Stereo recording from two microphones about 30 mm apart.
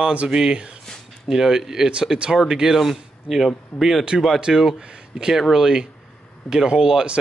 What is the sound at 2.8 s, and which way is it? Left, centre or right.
A man's voice, centre.